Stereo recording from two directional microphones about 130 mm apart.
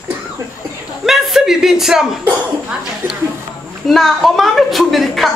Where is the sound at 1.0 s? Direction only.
Centre (ahead or behind).